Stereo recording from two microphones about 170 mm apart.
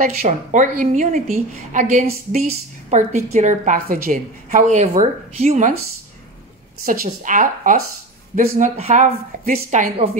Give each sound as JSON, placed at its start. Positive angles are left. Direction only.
{"t": 0.0, "sound": "a woman's voice", "side_deg": -45}
{"t": 6.8, "sound": "a woman's voice", "side_deg": -55}